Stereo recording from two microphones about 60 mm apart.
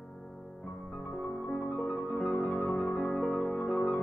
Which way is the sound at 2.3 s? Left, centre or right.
Left.